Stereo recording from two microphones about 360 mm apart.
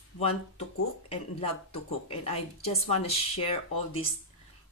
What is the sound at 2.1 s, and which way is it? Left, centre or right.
Speech, centre.